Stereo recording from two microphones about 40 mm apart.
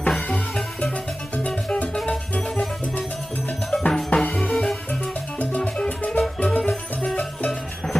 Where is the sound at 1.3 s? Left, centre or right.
Left.